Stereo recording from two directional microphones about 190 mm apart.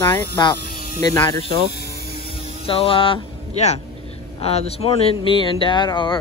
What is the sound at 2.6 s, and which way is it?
Speech, 30° left (ahead or behind).